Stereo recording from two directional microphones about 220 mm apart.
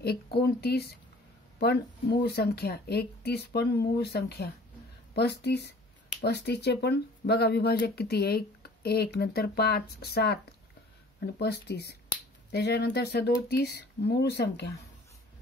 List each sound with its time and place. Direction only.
0.0 s speech: 45° left (ahead or behind)